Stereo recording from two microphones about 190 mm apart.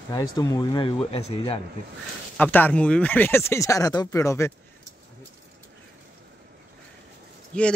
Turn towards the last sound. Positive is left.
turn(degrees=5)  # may be behind; listen again after turning